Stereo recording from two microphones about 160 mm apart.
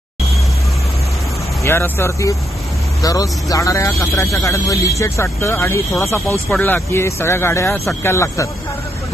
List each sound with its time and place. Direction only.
1.6 s speech: 15° left (ahead or behind)